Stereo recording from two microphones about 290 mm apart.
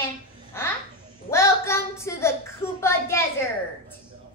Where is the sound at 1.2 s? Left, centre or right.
Centre.